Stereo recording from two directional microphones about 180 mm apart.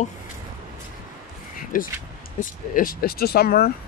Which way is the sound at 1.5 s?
50° left (ahead or behind).